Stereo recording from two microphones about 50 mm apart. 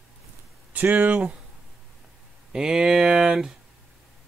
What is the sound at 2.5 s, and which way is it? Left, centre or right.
Speech, centre.